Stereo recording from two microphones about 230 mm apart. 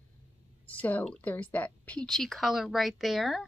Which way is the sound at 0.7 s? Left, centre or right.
Centre.